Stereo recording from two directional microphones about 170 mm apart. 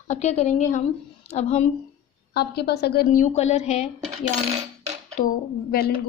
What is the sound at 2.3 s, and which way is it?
A woman's voice, 75° left (ahead or behind).